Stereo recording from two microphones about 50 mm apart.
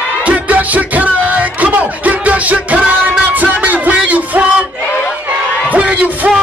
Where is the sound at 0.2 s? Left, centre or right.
Right.